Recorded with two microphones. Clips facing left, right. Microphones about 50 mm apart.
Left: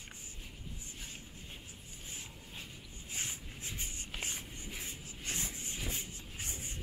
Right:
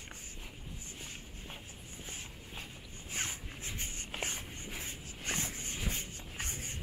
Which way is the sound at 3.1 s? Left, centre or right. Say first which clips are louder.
Right 3 dB; right.